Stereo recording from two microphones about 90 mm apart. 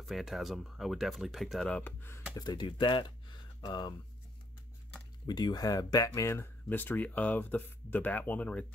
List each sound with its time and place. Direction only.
0.0 s speech: centre (ahead or behind)
1.7 s speech: 15° left (ahead or behind)
2.3 s speech: 50° left (ahead or behind)
5.2 s speech: 50° left (ahead or behind); by 8.6 s 15° left (ahead or behind)